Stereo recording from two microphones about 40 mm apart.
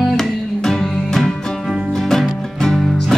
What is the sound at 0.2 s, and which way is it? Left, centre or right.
Music, centre.